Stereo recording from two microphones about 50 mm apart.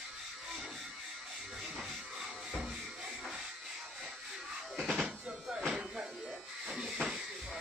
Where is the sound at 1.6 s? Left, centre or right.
Centre.